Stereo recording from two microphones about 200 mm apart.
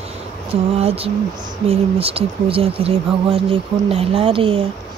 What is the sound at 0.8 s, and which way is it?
Speech, 30° right (ahead or behind).